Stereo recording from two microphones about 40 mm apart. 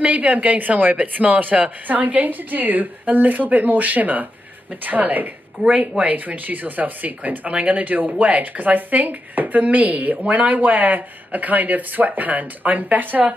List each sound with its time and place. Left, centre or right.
0.0 s a woman's voice: right